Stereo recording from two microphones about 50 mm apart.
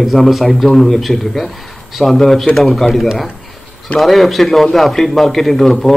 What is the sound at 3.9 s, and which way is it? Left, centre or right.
A man's voice, centre.